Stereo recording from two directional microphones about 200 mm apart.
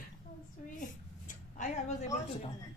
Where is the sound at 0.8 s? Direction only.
40° left (ahead or behind).